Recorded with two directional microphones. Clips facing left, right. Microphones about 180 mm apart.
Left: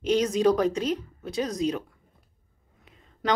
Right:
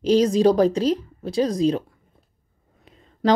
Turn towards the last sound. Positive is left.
turn(degrees=-35)  # may be behind; listen again after turning